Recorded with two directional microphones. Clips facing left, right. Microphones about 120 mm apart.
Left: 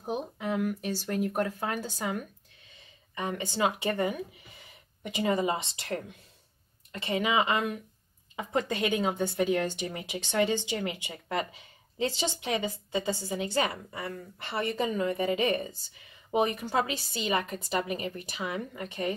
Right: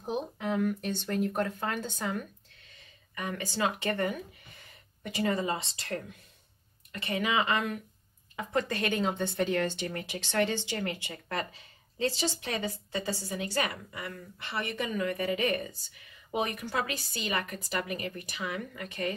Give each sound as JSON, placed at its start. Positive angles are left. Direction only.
{"t": 0.0, "sound": "speech", "side_deg": 5}
{"t": 2.7, "sound": "a woman's voice", "side_deg": 25}